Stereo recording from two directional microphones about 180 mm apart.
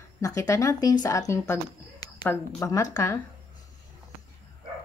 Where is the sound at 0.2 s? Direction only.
20° left (ahead or behind).